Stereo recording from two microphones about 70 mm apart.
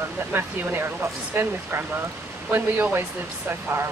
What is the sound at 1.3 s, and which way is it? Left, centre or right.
Speech, right.